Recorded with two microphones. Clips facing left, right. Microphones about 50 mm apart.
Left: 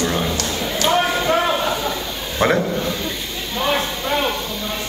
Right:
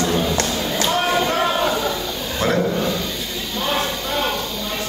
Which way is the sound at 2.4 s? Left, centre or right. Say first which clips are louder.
Left 3 dB; left.